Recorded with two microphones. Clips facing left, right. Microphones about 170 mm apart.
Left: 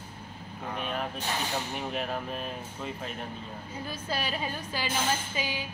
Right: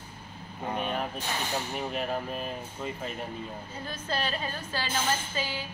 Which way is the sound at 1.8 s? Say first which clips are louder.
Right 1 dB; centre (ahead or behind).